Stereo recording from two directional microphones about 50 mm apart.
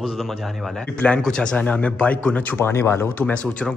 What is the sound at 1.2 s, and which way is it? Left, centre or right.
Speech, centre.